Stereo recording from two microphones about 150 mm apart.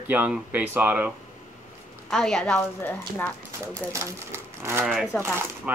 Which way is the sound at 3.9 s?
20° right (ahead or behind).